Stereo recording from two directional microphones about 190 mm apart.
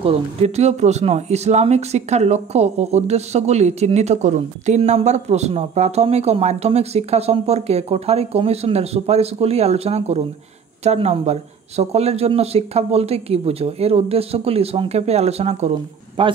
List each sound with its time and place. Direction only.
0.0 s a man's voice: 35° right (ahead or behind)